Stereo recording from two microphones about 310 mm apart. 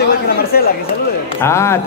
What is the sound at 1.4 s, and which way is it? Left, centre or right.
Speech, centre.